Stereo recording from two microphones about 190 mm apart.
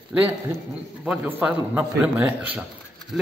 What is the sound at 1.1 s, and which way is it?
A man's voice, 10° right (ahead or behind).